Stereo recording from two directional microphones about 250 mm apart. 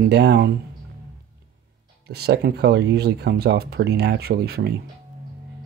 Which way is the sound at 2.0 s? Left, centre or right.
Right.